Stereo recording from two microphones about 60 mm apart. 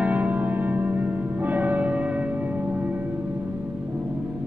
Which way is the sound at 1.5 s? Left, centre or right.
Right.